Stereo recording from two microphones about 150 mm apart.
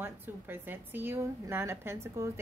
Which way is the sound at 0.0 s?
15° right (ahead or behind).